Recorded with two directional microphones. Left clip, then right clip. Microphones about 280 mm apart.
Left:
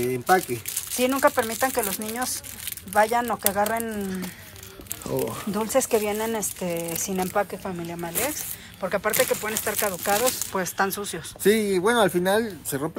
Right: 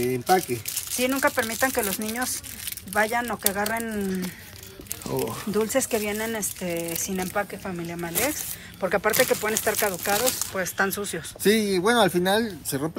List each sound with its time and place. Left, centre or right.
0.0 s speech: centre
8.1 s speech: centre